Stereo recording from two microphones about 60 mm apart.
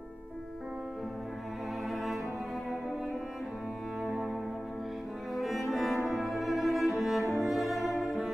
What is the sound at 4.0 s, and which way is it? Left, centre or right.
Music, centre.